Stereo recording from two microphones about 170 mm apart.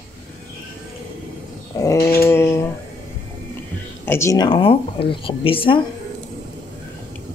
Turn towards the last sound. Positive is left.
turn(degrees=30)  # may be behind; listen again after turning